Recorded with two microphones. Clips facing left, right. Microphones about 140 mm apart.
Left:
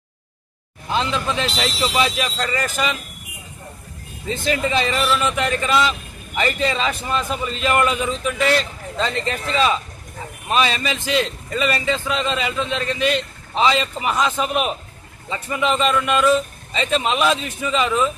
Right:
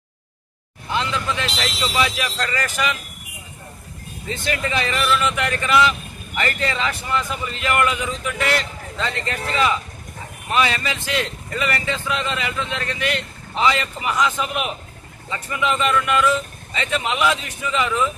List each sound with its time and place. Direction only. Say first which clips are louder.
0.9 s speech: left 2 dB; 25° left (ahead or behind)
4.3 s speech: left 4 dB; 20° left (ahead or behind)